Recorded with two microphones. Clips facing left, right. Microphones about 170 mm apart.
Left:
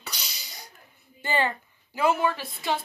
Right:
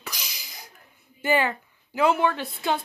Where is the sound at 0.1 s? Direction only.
90° right.